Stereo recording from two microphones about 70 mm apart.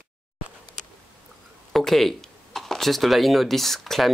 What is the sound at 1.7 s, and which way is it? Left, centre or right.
Speech, centre.